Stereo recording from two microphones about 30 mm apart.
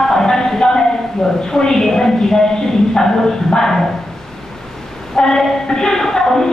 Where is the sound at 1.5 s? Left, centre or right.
Centre.